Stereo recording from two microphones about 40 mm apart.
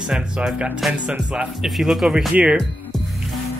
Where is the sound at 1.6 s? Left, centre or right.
Centre.